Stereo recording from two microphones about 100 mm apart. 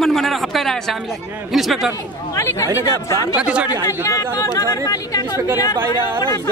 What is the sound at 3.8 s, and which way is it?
Speech, 30° left (ahead or behind).